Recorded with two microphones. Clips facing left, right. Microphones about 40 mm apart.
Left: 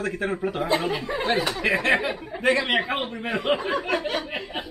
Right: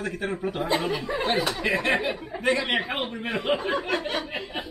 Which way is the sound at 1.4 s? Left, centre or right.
Centre.